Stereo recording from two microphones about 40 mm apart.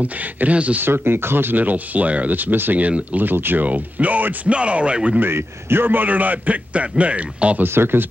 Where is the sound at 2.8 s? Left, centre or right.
Right.